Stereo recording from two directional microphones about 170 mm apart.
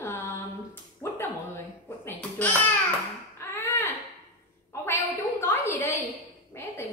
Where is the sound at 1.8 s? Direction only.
15° left (ahead or behind).